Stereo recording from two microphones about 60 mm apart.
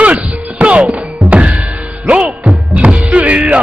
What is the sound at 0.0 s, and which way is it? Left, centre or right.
Music, right.